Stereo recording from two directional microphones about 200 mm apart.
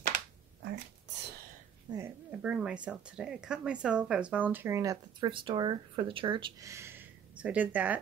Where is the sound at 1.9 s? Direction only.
15° right (ahead or behind).